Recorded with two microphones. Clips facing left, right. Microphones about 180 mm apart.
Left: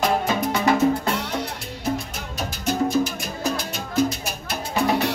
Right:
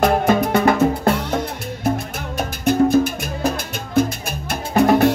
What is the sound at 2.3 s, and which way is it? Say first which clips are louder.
Music: right 7 dB; 55° right (ahead or behind).